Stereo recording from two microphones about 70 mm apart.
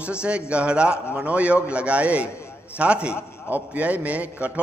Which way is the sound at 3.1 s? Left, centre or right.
Left.